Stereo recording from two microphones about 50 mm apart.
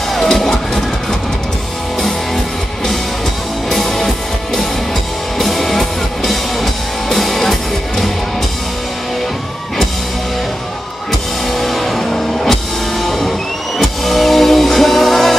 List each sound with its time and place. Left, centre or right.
0.1 s music: centre
2.0 s music: centre
3.7 s music: centre
5.4 s music: centre
11.5 s music: centre